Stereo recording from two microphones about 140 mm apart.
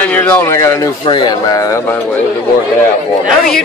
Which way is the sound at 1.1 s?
30° left (ahead or behind).